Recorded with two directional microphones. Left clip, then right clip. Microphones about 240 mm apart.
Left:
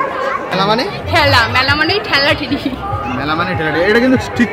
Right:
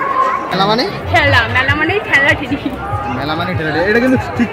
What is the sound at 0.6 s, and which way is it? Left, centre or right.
Speech, centre.